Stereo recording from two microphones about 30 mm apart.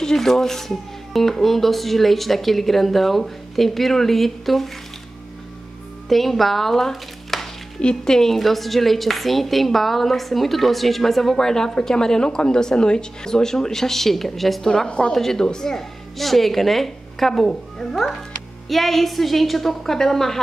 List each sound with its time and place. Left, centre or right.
0.0 s speech: centre
6.0 s speech: centre
7.8 s speech: left
8.4 s a woman's voice: centre
11.3 s speech: centre
14.9 s speech: left
15.3 s speech: left
16.2 s a woman's voice: centre